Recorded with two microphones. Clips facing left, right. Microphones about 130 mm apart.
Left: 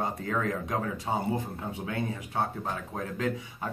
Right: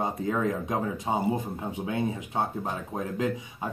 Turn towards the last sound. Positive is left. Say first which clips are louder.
# right 2 dB
turn(degrees=-20)  # may be behind; listen again after turning